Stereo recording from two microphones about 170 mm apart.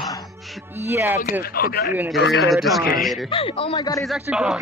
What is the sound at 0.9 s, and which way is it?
Speech, 15° right (ahead or behind).